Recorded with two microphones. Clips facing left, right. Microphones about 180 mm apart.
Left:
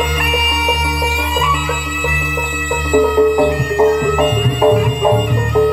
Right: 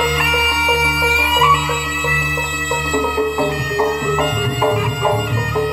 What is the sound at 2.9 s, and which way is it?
Music, 50° left (ahead or behind).